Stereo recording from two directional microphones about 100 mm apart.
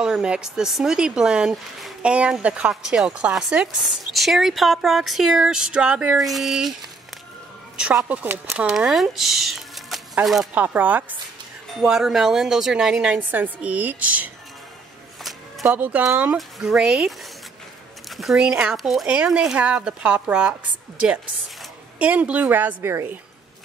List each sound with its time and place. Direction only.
0.0 s speech: 10° right (ahead or behind)
7.7 s speech: 10° right (ahead or behind)
10.5 s speech: 15° right (ahead or behind)
11.8 s speech: 5° right (ahead or behind)
13.3 s speech: 15° right (ahead or behind)
15.6 s speech: 15° right (ahead or behind)
16.3 s speech: 5° right (ahead or behind)
18.1 s speech: 5° right (ahead or behind)
19.0 s speech: 10° right (ahead or behind)